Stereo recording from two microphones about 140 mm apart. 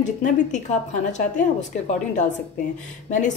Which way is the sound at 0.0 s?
60° left (ahead or behind).